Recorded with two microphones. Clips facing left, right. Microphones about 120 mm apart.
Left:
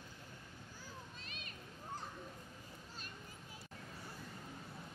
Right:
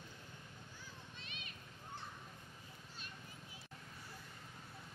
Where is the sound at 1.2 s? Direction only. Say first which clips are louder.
Left 1 dB; 40° left (ahead or behind).